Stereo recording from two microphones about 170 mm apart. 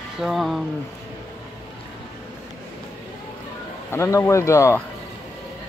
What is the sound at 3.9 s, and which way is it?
Speech, 15° left (ahead or behind).